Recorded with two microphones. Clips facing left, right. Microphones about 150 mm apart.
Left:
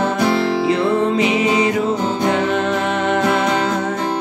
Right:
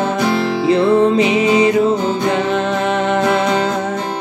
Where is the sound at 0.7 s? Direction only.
25° right (ahead or behind).